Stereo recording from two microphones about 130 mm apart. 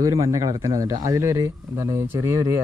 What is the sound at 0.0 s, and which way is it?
Speech, 25° right (ahead or behind).